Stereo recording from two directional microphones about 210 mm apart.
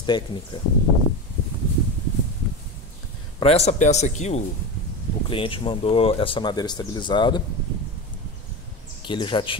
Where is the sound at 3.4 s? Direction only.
30° left (ahead or behind).